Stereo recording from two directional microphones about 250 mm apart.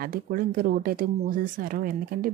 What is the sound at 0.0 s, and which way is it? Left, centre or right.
Speech, right.